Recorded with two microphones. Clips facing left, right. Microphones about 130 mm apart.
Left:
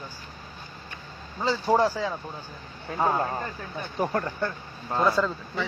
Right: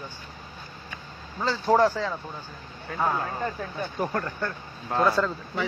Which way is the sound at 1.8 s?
5° left (ahead or behind).